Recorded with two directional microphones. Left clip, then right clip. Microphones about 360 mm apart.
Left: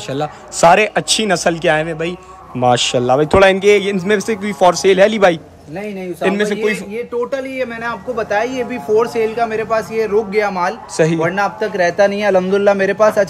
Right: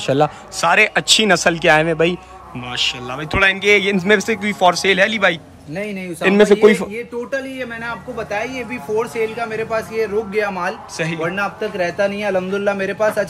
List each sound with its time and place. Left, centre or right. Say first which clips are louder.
0.0 s a man's voice: right 5 dB; centre
6.2 s a man's voice: right 5 dB; centre
7.5 s speech: left 5 dB; left